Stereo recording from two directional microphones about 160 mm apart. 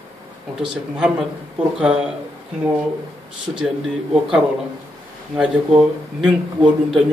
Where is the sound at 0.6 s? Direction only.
5° right (ahead or behind).